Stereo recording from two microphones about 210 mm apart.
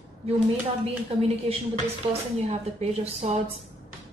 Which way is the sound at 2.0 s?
25° right (ahead or behind).